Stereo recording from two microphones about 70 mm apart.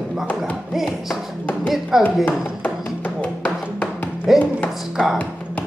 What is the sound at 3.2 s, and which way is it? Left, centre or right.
Music, left.